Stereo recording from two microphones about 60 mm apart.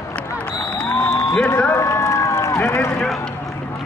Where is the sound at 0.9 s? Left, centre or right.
Left.